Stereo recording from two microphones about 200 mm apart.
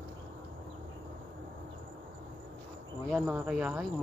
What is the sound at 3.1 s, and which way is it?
Cricket, centre (ahead or behind).